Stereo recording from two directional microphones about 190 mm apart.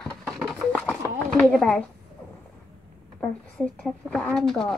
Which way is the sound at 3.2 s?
5° left (ahead or behind).